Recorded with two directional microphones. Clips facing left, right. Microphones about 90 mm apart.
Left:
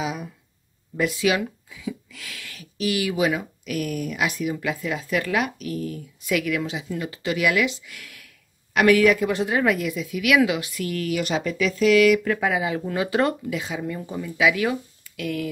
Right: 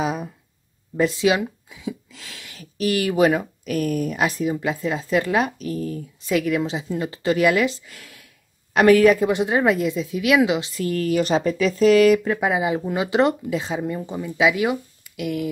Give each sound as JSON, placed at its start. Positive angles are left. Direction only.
{"t": 0.0, "sound": "a sound", "side_deg": -40}
{"t": 0.9, "sound": "speech", "side_deg": -30}
{"t": 2.6, "sound": "speech", "side_deg": -45}
{"t": 9.3, "sound": "speech", "side_deg": -20}
{"t": 12.3, "sound": "speech", "side_deg": -25}
{"t": 13.9, "sound": "speech", "side_deg": -20}